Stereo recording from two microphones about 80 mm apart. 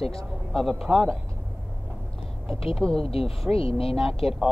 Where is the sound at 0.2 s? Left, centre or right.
Centre.